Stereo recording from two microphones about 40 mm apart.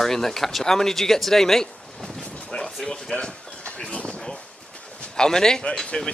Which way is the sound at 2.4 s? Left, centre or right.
Centre.